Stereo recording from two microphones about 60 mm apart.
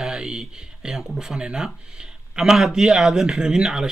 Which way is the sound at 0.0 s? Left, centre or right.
Centre.